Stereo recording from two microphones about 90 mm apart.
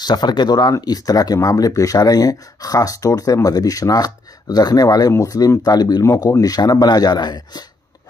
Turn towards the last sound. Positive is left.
turn(degrees=50)  # may be behind; listen again after turning